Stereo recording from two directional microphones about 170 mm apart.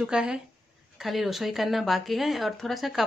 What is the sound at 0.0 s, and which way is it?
Speech, 5° right (ahead or behind).